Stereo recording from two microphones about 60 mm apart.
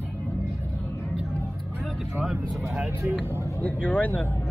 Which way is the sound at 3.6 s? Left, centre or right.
Left.